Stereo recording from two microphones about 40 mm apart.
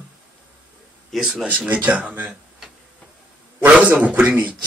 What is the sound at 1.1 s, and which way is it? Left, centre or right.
Speech, centre.